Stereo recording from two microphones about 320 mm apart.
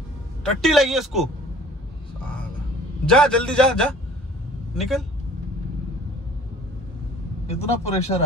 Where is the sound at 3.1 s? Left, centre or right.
Centre.